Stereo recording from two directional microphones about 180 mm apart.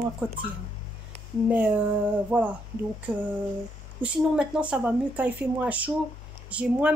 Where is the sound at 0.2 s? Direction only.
10° right (ahead or behind).